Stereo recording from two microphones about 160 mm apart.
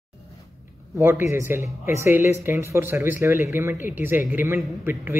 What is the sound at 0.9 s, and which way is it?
Speech, 15° right (ahead or behind).